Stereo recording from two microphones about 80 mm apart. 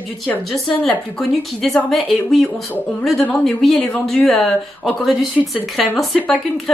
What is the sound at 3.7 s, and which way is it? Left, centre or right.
Speech, centre.